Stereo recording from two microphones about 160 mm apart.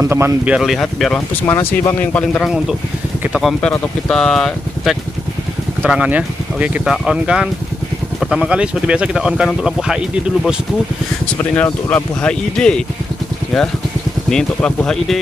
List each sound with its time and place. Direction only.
0.0 s a man's voice: 15° right (ahead or behind)
0.6 s speech: centre (ahead or behind)
1.4 s speech: 15° left (ahead or behind)
5.8 s speech: 10° right (ahead or behind)
11.5 s speech: 10° left (ahead or behind)
14.3 s speech: 5° left (ahead or behind)